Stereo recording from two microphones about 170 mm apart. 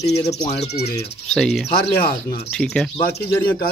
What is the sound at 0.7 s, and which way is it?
Speech, 75° left (ahead or behind).